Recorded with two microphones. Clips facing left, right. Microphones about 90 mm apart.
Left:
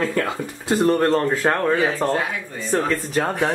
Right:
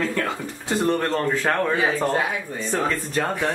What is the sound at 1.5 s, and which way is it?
Speech, 20° left (ahead or behind).